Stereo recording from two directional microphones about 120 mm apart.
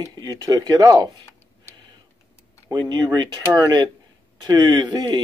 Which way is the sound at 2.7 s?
35° right (ahead or behind).